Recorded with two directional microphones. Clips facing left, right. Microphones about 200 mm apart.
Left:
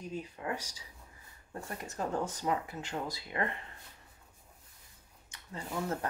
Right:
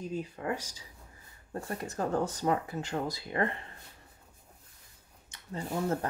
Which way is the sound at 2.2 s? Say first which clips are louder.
Right 4 dB; 40° right (ahead or behind).